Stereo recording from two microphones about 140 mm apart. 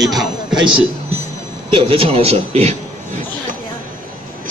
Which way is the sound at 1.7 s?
40° right (ahead or behind).